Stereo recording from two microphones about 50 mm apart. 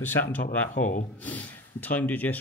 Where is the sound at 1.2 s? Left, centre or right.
Left.